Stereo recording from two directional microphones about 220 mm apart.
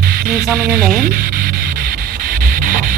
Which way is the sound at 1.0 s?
40° right (ahead or behind).